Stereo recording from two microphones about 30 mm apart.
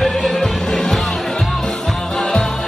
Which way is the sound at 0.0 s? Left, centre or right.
Centre.